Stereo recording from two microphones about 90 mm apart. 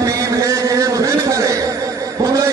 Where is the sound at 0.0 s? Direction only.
35° right (ahead or behind).